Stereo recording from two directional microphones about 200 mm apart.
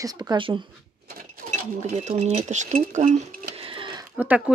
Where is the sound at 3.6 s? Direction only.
25° right (ahead or behind).